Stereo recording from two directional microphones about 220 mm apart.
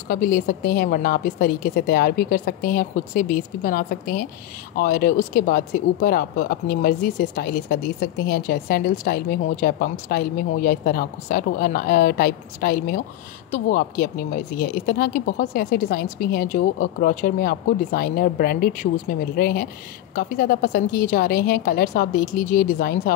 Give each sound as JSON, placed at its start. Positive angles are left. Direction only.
{"t": 0.1, "sound": "speech", "side_deg": 40}